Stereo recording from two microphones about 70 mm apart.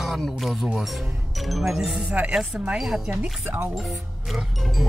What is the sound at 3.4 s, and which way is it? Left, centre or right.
Speech, right.